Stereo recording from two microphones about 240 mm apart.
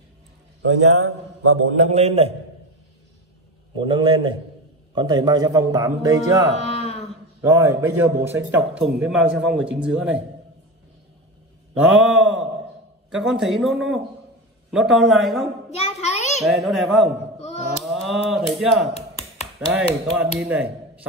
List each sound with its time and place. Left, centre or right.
0.6 s a man's voice: right
1.9 s a man's voice: right
3.7 s a man's voice: centre
6.6 s a sound: left
7.4 s a man's voice: centre
11.7 s a man's voice: centre
15.7 s a sound: left
16.4 s a man's voice: centre
17.4 s a sound: left
17.8 s a man's voice: centre